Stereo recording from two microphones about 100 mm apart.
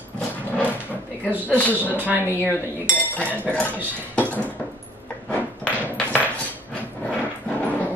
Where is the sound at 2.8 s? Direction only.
20° left (ahead or behind).